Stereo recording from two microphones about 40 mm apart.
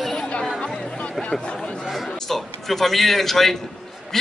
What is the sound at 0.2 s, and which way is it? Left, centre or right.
Chatter, left.